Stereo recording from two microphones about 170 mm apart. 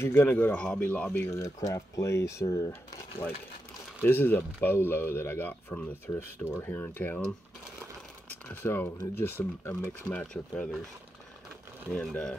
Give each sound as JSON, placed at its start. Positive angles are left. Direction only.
{"t": 0.0, "sound": "speech", "side_deg": 15}
{"t": 8.3, "sound": "speech", "side_deg": 10}
{"t": 11.9, "sound": "speech", "side_deg": 5}